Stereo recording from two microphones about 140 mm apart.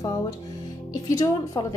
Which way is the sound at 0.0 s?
30° left (ahead or behind).